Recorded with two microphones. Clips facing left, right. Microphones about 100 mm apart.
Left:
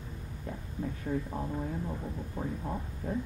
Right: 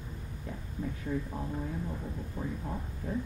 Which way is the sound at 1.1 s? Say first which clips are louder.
Left 1 dB; 50° left (ahead or behind).